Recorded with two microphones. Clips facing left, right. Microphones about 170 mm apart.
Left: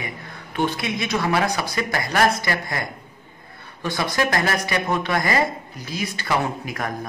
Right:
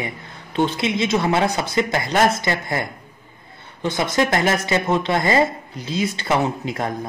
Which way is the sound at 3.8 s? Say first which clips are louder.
Right 3 dB; 20° right (ahead or behind).